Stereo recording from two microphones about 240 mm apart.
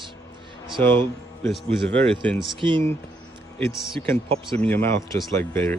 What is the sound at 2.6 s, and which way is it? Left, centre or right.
Speech, right.